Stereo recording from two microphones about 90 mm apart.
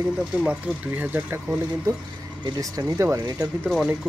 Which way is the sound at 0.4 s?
15° right (ahead or behind).